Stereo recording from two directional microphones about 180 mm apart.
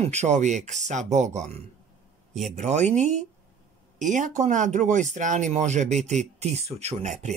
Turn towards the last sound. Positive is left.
turn(degrees=-40)  # may be behind; listen again after turning